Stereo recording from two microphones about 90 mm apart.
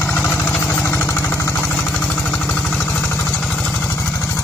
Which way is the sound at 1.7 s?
15° left (ahead or behind).